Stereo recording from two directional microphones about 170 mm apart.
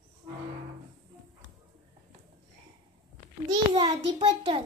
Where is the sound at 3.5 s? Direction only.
25° right (ahead or behind).